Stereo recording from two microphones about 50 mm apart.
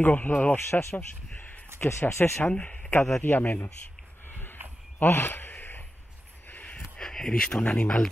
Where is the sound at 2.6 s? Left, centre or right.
Left.